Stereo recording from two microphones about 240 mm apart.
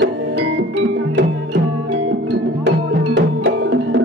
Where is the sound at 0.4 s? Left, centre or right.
Right.